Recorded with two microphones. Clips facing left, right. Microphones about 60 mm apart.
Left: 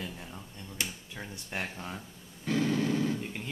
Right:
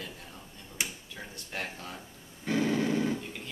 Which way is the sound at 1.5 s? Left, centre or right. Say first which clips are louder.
Left 1 dB; centre.